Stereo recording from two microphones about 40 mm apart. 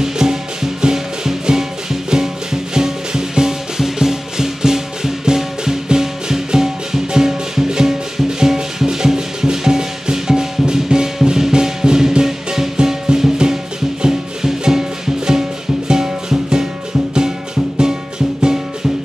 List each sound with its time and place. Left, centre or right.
0.0 s music: centre